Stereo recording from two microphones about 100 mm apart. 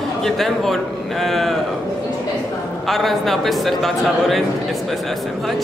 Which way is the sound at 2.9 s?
Centre (ahead or behind).